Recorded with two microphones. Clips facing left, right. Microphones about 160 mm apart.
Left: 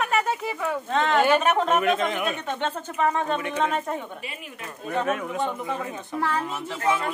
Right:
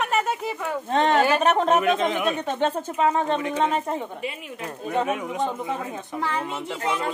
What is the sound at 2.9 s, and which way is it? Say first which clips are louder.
Speech: right 1 dB; 25° right (ahead or behind).